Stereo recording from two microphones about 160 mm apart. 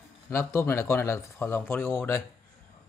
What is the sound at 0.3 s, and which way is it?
Speech, 15° left (ahead or behind).